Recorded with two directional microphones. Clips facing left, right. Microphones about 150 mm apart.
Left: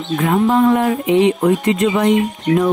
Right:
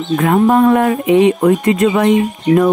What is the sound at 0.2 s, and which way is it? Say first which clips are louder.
Speech: right 3 dB; 55° right (ahead or behind).